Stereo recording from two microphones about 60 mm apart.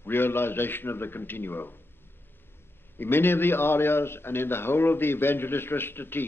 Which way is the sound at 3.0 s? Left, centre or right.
Left.